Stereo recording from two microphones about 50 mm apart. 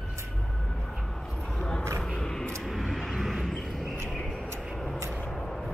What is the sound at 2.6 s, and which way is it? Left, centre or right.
Vehicle, centre.